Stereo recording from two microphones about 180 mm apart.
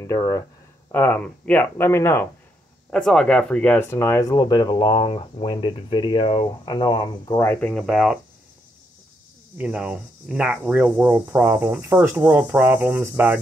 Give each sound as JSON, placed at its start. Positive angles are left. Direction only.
{"t": 0.0, "sound": "speech", "side_deg": 15}
{"t": 2.9, "sound": "speech", "side_deg": 5}
{"t": 7.3, "sound": "speech", "side_deg": 10}
{"t": 9.6, "sound": "speech", "side_deg": -5}